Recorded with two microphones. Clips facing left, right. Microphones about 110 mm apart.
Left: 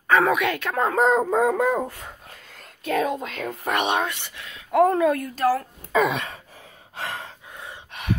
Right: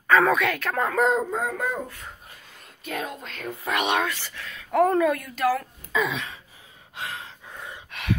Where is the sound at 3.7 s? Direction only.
25° left (ahead or behind).